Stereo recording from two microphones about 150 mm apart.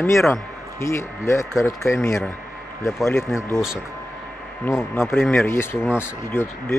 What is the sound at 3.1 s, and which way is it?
Speech, 15° left (ahead or behind).